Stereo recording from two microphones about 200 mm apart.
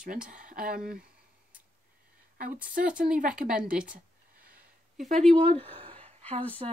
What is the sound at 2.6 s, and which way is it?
Speech, 45° right (ahead or behind).